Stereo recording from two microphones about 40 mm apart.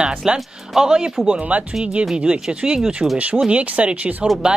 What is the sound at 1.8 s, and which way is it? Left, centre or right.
Speech, right.